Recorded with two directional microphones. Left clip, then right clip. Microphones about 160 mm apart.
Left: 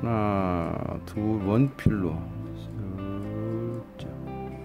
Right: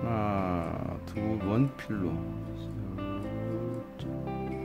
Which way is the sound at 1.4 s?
20° left (ahead or behind).